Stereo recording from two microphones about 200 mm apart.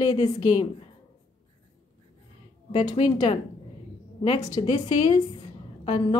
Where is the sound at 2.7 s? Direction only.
20° left (ahead or behind).